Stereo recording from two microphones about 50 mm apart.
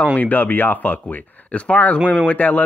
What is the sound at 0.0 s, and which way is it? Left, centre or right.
A man's voice, left.